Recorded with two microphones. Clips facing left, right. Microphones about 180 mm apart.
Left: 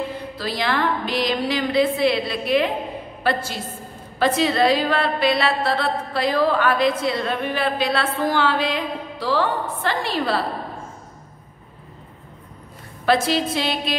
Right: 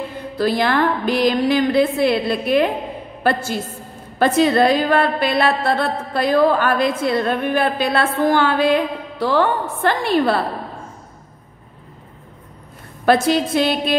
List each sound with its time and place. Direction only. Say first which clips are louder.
0.4 s a woman's voice: right 7 dB; 50° right (ahead or behind)
4.2 s a woman's voice: right 4 dB; 50° right (ahead or behind)
13.0 s a woman's voice: right 4 dB; 50° right (ahead or behind)